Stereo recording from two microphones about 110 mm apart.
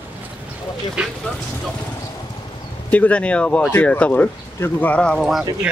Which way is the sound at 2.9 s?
10° left (ahead or behind).